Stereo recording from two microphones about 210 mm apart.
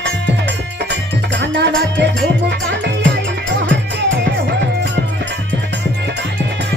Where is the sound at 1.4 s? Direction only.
55° right (ahead or behind).